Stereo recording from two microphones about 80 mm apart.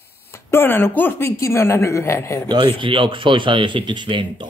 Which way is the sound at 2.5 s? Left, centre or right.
Right.